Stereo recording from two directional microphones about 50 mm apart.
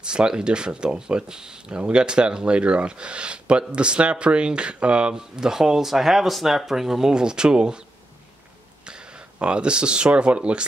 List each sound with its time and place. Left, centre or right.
0.0 s speech: centre
8.8 s speech: centre